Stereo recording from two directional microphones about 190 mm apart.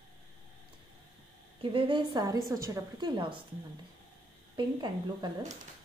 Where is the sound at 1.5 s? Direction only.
25° right (ahead or behind).